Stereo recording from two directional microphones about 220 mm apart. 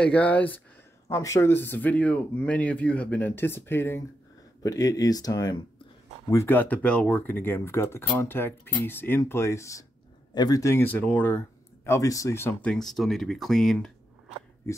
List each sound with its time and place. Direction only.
0.0 s speech: 5° left (ahead or behind)
14.7 s speech: 15° left (ahead or behind)